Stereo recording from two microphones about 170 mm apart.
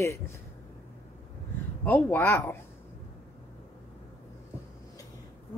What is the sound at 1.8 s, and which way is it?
Speech, 10° left (ahead or behind).